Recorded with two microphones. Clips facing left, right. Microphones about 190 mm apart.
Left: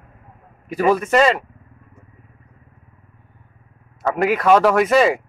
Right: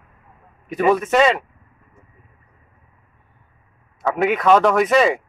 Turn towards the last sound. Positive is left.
turn(degrees=0)  # may be behind; listen again after turning